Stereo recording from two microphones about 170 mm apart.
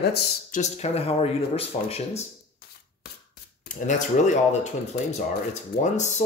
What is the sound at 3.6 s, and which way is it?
Speech, 45° left (ahead or behind).